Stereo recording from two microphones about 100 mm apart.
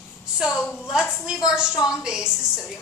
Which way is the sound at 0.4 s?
5° right (ahead or behind).